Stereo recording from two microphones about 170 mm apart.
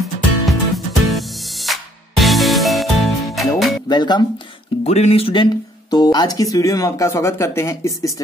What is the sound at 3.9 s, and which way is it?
Speech, 25° left (ahead or behind).